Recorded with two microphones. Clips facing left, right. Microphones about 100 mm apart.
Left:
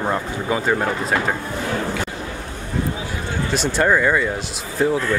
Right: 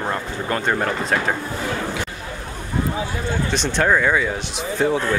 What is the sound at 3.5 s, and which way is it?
Speech, 5° left (ahead or behind).